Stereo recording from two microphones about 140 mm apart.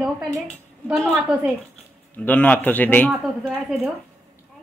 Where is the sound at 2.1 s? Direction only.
10° left (ahead or behind).